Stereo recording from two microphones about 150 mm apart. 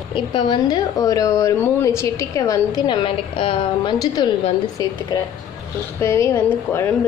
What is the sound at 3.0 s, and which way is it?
A woman's voice, 35° left (ahead or behind).